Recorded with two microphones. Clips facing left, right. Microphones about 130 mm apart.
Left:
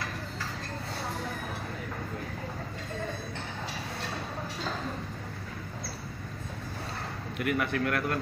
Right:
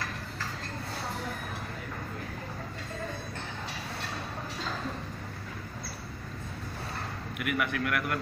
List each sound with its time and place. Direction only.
7.3 s a man's voice: 30° left (ahead or behind)